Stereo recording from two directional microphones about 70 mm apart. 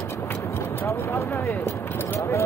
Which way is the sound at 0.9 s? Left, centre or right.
Left.